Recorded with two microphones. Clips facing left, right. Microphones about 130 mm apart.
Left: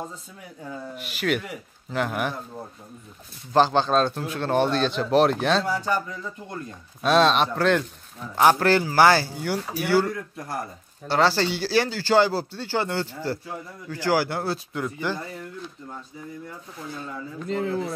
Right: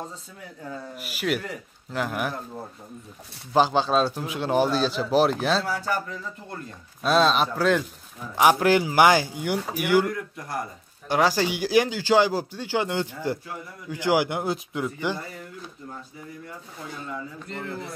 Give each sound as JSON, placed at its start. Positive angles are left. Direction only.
{"t": 0.9, "sound": "a man's voice", "side_deg": -5}
{"t": 5.7, "sound": "speech", "side_deg": 20}
{"t": 7.0, "sound": "a man's voice", "side_deg": 0}
{"t": 17.6, "sound": "a man's voice", "side_deg": 0}